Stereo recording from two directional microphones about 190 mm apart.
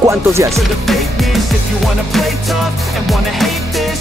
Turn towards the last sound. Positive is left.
turn(degrees=0)  # may be behind; listen again after turning